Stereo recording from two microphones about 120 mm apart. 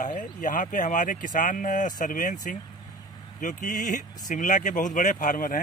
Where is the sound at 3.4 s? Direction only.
90° left.